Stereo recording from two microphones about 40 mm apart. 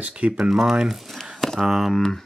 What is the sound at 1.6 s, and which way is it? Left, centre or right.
Speech, centre.